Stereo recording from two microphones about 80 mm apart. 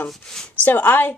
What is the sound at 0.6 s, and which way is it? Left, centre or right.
Speech, left.